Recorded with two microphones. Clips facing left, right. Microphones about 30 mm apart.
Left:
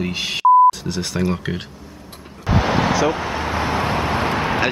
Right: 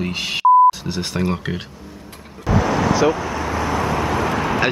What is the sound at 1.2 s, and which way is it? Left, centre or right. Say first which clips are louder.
Speech: even; centre.